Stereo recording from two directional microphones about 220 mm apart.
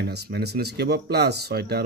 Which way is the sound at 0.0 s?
50° right (ahead or behind).